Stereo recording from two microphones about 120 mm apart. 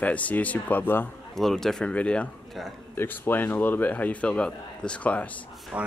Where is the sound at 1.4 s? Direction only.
5° left (ahead or behind).